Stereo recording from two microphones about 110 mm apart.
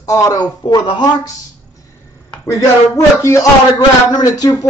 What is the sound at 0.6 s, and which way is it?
Speech, 45° left (ahead or behind).